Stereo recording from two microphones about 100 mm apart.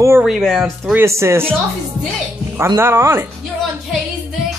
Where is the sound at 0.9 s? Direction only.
25° right (ahead or behind).